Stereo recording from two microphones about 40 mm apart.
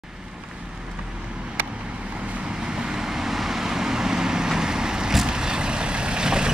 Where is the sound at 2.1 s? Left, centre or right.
Right.